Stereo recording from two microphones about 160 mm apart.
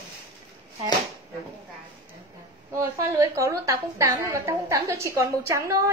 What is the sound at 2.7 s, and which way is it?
A woman's voice, 20° right (ahead or behind).